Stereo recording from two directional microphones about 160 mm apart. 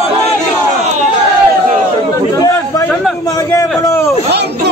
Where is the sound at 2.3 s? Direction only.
20° left (ahead or behind).